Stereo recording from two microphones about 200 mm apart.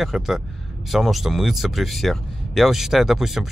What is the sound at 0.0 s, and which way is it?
Speech, centre (ahead or behind).